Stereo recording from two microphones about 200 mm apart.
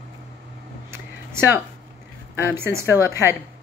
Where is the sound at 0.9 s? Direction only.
10° right (ahead or behind).